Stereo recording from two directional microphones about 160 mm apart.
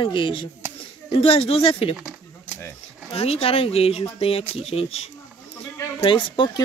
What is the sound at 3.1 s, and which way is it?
Speech, 40° left (ahead or behind).